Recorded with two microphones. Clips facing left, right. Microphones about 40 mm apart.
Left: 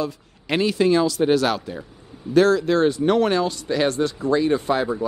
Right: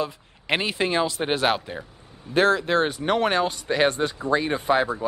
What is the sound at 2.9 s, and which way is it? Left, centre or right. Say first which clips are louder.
Speech: left 5 dB; centre.